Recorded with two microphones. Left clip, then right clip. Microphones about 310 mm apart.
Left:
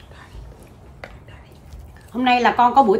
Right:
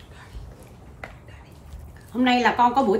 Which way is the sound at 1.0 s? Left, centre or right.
Centre.